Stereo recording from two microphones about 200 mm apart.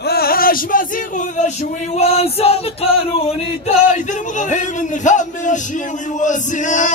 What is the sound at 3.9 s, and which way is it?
A man's voice, 40° left (ahead or behind).